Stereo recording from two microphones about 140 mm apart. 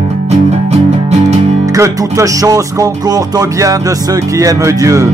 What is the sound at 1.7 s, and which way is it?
Music, 20° right (ahead or behind).